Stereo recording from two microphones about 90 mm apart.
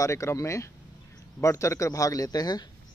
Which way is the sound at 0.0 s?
35° left (ahead or behind).